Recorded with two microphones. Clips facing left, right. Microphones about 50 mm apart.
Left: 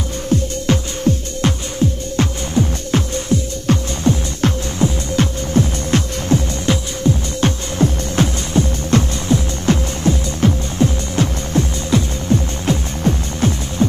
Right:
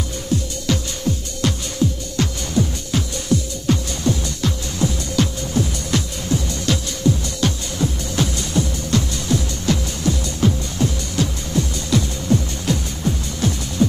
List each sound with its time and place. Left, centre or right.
0.3 s music: left
3.6 s music: left
6.7 s music: left